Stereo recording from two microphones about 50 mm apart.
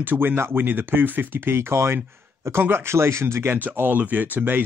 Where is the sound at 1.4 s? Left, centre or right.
Right.